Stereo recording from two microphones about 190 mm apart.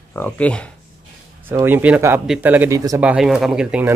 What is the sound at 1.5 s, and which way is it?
Speech, 10° right (ahead or behind).